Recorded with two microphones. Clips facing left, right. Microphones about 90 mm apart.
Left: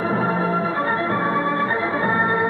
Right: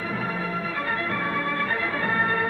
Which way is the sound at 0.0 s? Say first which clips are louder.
Left 8 dB; 35° left (ahead or behind).